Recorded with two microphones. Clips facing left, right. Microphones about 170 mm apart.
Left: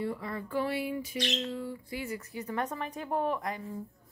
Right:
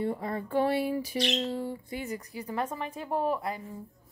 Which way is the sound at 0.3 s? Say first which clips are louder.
Right 7 dB; 25° right (ahead or behind).